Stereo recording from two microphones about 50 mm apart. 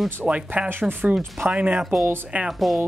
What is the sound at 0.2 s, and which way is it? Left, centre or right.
Speech, right.